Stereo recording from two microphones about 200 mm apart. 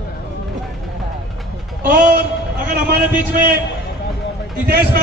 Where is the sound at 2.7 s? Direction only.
45° right (ahead or behind).